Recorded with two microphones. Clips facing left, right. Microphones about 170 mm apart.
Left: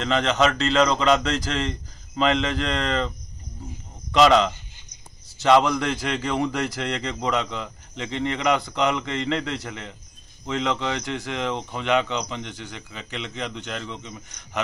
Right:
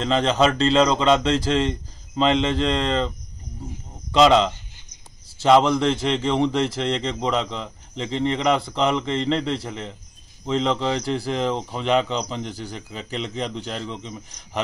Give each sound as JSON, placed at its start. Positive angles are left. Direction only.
{"t": 0.0, "sound": "a man's voice", "side_deg": -30}
{"t": 5.4, "sound": "a man's voice", "side_deg": -25}